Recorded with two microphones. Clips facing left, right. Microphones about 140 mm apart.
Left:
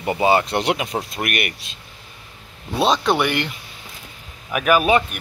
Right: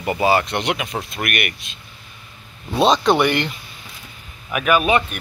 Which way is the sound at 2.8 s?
5° left (ahead or behind).